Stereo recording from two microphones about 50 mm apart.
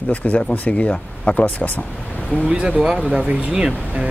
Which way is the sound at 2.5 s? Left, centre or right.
Centre.